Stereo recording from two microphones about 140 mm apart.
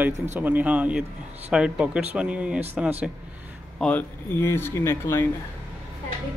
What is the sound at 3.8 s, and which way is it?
Speech, 10° left (ahead or behind).